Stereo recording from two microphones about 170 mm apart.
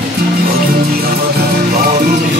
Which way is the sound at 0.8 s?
60° right (ahead or behind).